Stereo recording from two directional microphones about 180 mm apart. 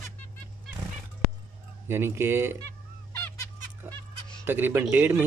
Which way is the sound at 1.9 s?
15° right (ahead or behind).